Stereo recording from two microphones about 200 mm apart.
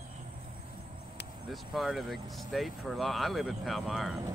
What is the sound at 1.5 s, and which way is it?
Speech, centre (ahead or behind).